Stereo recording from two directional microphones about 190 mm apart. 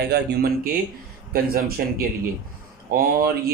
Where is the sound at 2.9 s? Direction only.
50° right (ahead or behind).